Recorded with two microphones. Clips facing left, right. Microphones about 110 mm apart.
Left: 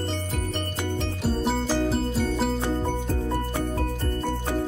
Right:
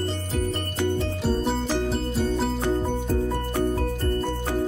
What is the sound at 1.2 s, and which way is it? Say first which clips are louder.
Music: left 1 dB; centre (ahead or behind).